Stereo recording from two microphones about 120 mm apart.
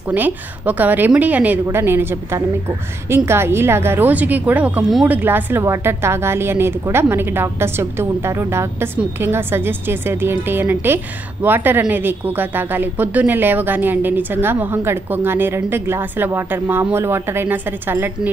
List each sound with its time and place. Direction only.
0.1 s a woman's voice: 15° right (ahead or behind)